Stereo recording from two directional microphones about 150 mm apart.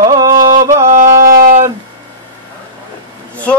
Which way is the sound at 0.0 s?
25° right (ahead or behind).